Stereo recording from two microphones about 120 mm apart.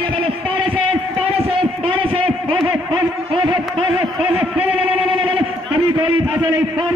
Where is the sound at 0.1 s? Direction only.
50° right (ahead or behind).